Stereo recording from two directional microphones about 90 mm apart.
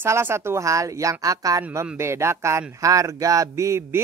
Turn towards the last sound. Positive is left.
turn(degrees=-30)  # may be behind; listen again after turning